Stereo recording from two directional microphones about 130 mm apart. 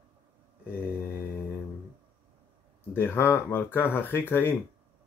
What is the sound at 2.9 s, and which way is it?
Speech, 20° left (ahead or behind).